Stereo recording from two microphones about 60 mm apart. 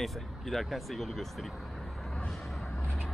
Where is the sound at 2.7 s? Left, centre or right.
Centre.